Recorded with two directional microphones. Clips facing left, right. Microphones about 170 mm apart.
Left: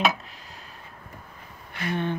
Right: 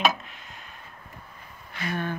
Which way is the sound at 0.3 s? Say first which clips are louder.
Even; 35° left (ahead or behind).